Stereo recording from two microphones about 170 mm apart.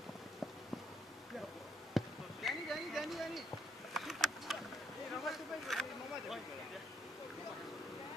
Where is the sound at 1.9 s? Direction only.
Centre (ahead or behind).